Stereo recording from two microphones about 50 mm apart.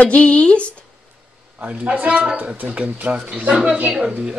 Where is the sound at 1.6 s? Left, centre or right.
Right.